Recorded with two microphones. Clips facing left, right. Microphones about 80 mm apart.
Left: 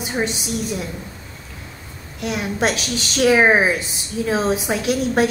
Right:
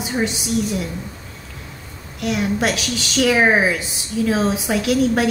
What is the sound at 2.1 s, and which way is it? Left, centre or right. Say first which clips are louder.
A woman's voice: right 2 dB; left.